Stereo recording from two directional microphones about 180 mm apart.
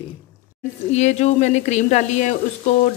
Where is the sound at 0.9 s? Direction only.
40° left (ahead or behind).